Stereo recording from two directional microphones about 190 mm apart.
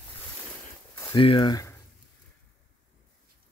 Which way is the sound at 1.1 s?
25° left (ahead or behind).